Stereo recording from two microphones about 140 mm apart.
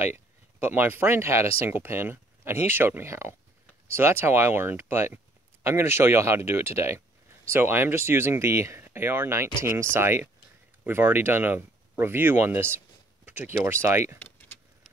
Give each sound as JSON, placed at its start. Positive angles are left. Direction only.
{"t": 0.6, "sound": "speech", "side_deg": -15}